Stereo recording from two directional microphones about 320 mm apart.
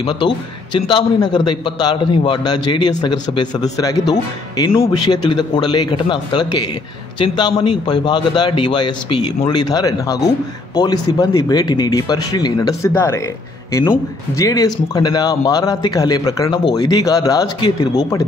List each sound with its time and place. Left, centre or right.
0.7 s a man's voice: centre